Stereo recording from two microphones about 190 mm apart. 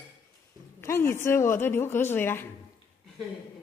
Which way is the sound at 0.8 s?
15° left (ahead or behind).